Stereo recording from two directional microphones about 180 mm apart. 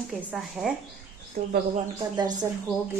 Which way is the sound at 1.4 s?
40° right (ahead or behind).